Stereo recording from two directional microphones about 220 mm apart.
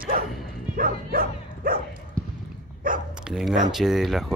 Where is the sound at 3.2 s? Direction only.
Centre (ahead or behind).